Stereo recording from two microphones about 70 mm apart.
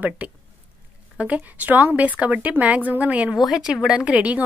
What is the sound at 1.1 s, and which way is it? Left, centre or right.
A woman's voice, right.